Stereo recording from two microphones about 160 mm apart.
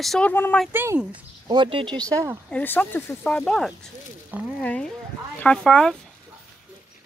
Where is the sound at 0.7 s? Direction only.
15° right (ahead or behind).